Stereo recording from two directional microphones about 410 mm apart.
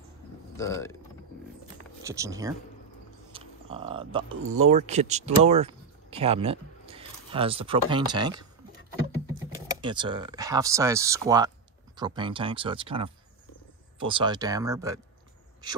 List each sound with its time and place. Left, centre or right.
0.6 s speech: centre
2.0 s speech: centre
9.8 s speech: centre